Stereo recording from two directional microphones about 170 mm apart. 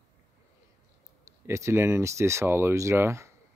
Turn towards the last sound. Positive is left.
turn(degrees=-15)  # may be behind; listen again after turning